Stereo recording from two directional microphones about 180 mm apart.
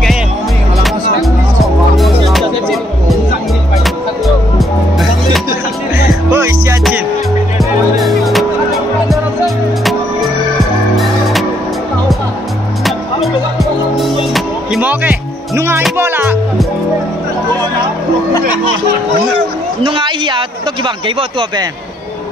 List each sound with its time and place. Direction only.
1.2 s music: centre (ahead or behind)
4.6 s music: centre (ahead or behind)
6.3 s music: 15° right (ahead or behind)
8.0 s music: centre (ahead or behind)
12.8 s music: centre (ahead or behind)
19.8 s a sound: 30° right (ahead or behind)